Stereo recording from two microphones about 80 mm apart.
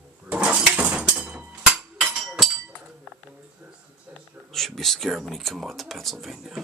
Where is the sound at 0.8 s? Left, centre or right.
Centre.